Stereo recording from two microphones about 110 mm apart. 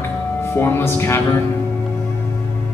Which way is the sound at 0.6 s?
20° left (ahead or behind).